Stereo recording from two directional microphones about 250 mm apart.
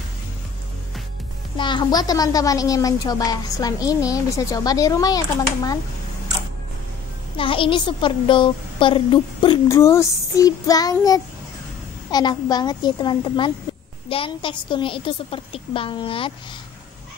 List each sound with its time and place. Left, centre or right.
1.6 s a woman's voice: centre
7.3 s a woman's voice: left